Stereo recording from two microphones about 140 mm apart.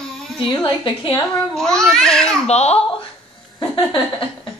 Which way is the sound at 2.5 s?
50° left (ahead or behind).